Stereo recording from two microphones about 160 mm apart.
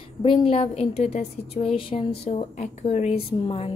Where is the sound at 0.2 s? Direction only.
35° left (ahead or behind).